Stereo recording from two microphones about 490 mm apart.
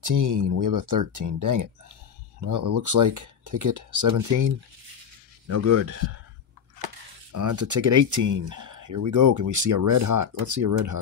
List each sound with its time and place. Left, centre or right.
0.0 s speech: right
7.3 s speech: right